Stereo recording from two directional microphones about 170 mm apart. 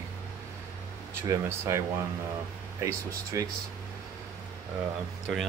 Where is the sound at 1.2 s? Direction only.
20° right (ahead or behind).